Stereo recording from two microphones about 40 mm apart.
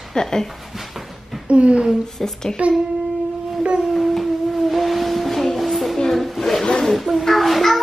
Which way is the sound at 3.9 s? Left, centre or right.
Centre.